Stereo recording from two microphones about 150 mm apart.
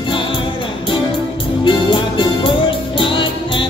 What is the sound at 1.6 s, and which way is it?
Music, 35° left (ahead or behind).